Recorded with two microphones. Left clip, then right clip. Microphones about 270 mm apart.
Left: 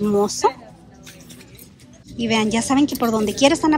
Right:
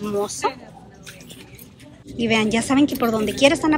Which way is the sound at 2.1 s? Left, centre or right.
Centre.